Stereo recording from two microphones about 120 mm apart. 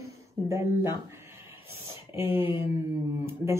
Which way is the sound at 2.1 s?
20° right (ahead or behind).